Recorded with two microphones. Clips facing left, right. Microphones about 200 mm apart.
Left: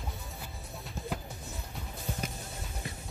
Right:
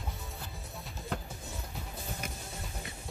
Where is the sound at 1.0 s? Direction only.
50° left (ahead or behind).